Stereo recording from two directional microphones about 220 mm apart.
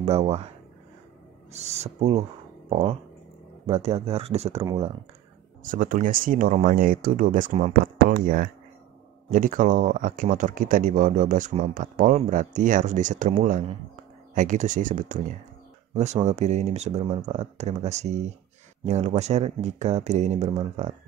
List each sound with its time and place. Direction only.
0.0 s speech: 30° right (ahead or behind)
1.5 s speech: 30° right (ahead or behind)
5.7 s speech: 40° right (ahead or behind)